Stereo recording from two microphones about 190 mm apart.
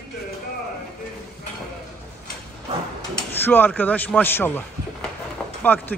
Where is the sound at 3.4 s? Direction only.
10° left (ahead or behind).